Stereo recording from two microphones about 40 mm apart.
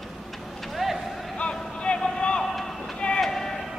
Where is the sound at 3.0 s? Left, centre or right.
Left.